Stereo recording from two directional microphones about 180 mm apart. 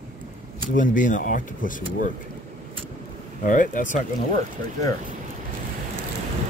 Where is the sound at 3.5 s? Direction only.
45° left (ahead or behind).